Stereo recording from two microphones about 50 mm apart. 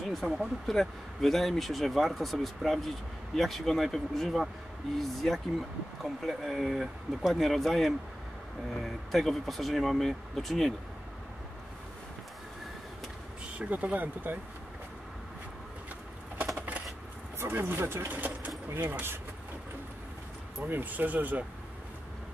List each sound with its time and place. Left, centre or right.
0.1 s speech: centre
13.6 s speech: right
16.5 s a sound: right
17.4 s speech: right
18.7 s speech: right
20.6 s speech: right